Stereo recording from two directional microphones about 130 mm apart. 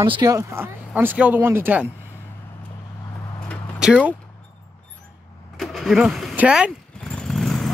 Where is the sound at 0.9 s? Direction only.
10° right (ahead or behind).